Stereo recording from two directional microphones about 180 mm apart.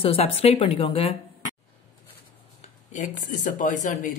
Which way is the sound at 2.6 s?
45° left (ahead or behind).